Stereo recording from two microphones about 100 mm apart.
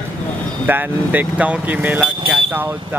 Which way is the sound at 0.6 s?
20° right (ahead or behind).